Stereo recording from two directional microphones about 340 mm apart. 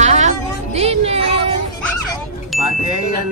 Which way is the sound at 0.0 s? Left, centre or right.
Centre.